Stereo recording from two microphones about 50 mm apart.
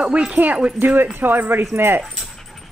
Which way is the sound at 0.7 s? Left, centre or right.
Right.